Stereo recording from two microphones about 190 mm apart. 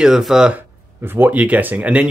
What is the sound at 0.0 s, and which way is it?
Speech, centre (ahead or behind).